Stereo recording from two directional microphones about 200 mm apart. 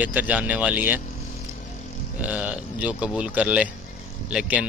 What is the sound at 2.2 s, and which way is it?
A man's voice, 5° right (ahead or behind).